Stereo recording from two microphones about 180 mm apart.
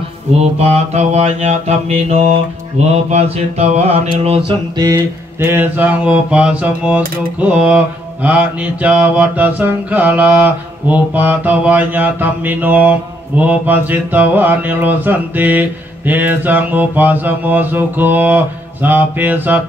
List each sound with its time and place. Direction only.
0.4 s mantra: 35° right (ahead or behind)
4.5 s mantra: 20° right (ahead or behind)